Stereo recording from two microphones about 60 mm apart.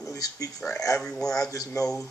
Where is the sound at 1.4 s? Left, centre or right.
Left.